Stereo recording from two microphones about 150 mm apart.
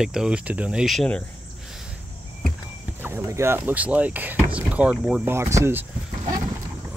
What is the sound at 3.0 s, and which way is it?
Speech, 20° right (ahead or behind).